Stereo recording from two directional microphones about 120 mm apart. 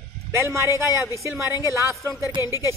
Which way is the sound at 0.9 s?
30° left (ahead or behind).